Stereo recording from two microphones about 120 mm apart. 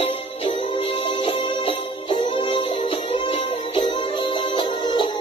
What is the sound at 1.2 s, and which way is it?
Music, 40° left (ahead or behind).